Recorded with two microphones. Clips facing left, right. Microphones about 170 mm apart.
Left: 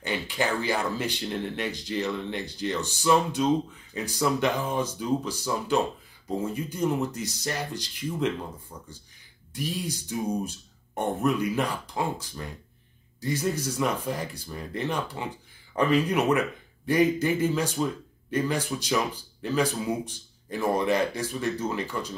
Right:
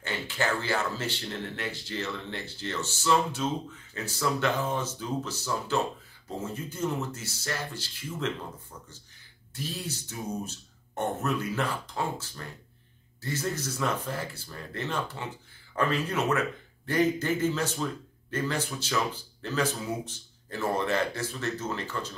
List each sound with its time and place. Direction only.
0.0 s speech: 15° left (ahead or behind)
9.5 s speech: 15° left (ahead or behind)